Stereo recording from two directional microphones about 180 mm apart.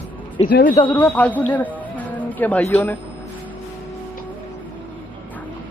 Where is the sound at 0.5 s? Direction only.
60° left (ahead or behind).